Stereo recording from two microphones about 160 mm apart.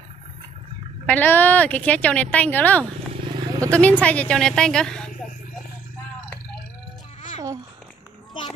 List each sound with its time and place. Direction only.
1.0 s speech: 10° left (ahead or behind)
7.3 s a child's voice: 25° right (ahead or behind)